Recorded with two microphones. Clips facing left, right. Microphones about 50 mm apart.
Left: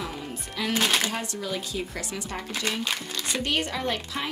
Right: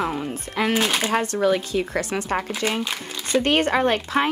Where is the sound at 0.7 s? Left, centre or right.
Centre.